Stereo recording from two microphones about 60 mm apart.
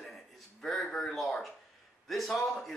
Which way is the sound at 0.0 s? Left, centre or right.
Centre.